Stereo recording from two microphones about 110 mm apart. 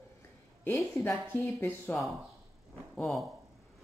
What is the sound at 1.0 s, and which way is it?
Speech, 20° left (ahead or behind).